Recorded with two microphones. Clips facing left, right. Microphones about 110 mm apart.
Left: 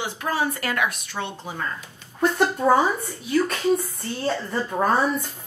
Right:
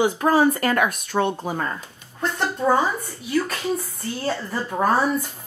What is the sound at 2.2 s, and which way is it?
Speech, 10° left (ahead or behind).